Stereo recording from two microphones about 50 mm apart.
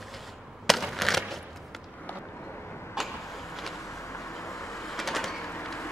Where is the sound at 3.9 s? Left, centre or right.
Left.